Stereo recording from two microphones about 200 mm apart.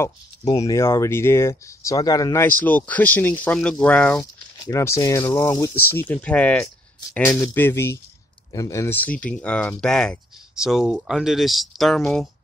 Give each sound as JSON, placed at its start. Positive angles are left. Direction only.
{"t": 0.7, "sound": "speech", "side_deg": 15}